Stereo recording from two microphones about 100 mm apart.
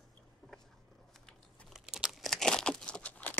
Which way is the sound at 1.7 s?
5° right (ahead or behind).